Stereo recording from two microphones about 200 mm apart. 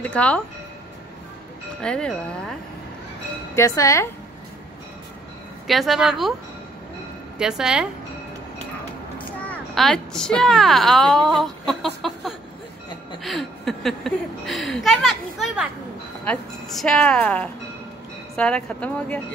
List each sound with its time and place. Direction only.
0.0 s speech: 5° left (ahead or behind)
1.8 s a woman's voice: 5° left (ahead or behind)
3.5 s speech: 15° left (ahead or behind)
5.7 s a woman's voice: centre (ahead or behind)
7.3 s a woman's voice: 5° right (ahead or behind)
9.2 s a woman's voice: 10° left (ahead or behind)